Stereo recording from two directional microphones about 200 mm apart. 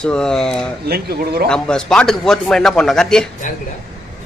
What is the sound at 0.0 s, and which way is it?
Speech, 5° left (ahead or behind).